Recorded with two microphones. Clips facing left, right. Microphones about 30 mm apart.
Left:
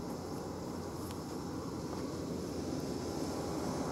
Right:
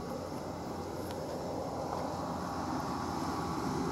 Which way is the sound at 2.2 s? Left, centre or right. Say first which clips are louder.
Right 3 dB; right.